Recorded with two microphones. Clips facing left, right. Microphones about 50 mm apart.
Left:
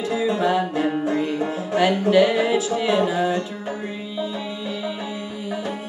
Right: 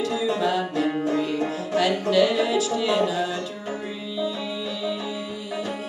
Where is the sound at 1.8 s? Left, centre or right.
Left.